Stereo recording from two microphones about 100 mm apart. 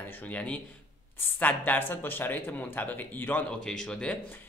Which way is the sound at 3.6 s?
5° left (ahead or behind).